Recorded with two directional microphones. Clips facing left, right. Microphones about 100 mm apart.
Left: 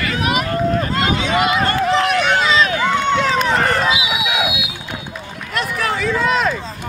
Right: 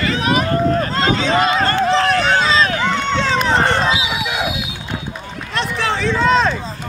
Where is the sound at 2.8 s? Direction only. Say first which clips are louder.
Left 2 dB; 10° left (ahead or behind).